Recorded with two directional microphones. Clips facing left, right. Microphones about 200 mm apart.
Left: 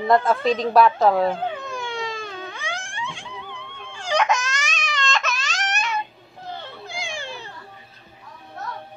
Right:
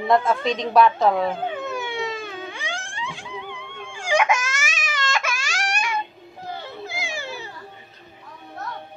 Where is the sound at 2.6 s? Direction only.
30° right (ahead or behind).